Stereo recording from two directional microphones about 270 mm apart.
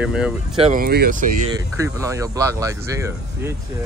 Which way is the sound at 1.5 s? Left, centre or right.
Centre.